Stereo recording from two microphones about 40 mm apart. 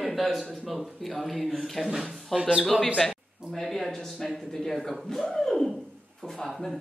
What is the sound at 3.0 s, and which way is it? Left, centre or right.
Speech, centre.